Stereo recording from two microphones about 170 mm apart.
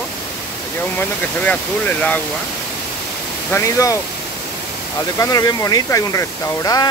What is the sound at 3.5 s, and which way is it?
Speech, 20° left (ahead or behind).